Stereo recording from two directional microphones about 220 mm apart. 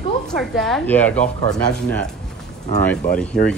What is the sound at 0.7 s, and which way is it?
Speech, 5° left (ahead or behind).